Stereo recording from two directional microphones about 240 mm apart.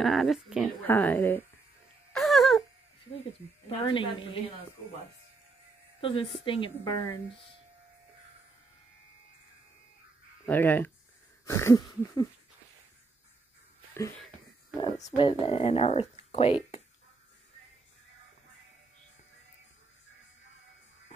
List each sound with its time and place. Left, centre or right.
0.0 s speech: centre
2.1 s a sound: centre
3.8 s speech: left
5.9 s speech: left
10.4 s a sound: centre
14.8 s speech: centre